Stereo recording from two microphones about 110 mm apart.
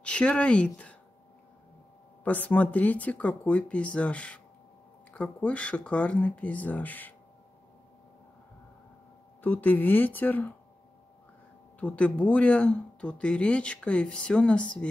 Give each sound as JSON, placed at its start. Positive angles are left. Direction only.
{"t": 0.0, "sound": "speech", "side_deg": 10}
{"t": 2.2, "sound": "speech", "side_deg": 15}
{"t": 9.4, "sound": "speech", "side_deg": 15}
{"t": 11.8, "sound": "speech", "side_deg": 10}